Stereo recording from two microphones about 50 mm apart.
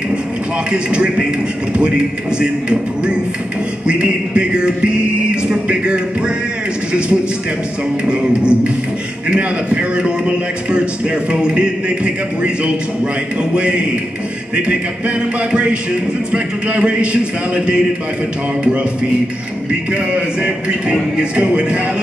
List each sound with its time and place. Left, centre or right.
0.7 s music: centre
8.1 s music: right
13.5 s music: right
19.9 s music: right